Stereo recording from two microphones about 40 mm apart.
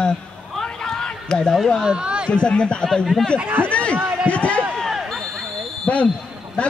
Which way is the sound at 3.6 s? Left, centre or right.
Left.